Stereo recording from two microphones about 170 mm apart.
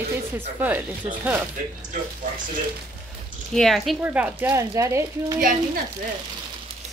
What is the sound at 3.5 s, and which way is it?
A woman's voice, centre (ahead or behind).